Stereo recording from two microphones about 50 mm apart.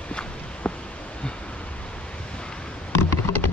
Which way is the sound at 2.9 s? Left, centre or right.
Left.